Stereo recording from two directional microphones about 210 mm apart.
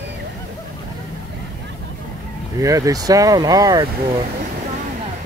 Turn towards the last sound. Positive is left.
turn(degrees=-20)  # may be behind; listen again after turning